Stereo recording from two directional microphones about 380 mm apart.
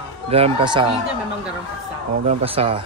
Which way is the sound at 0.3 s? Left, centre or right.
Centre.